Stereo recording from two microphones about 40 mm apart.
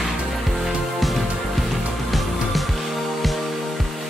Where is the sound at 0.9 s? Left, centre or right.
Centre.